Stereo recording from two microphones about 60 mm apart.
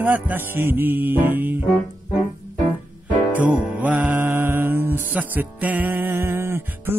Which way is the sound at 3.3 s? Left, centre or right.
Right.